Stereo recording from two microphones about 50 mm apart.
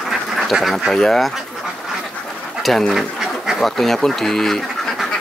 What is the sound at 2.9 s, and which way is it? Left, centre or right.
Duck, centre.